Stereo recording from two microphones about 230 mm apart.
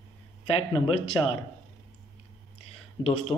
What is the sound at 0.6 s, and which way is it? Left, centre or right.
Speech, left.